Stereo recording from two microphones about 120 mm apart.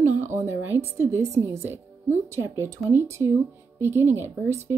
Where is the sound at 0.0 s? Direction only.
20° right (ahead or behind).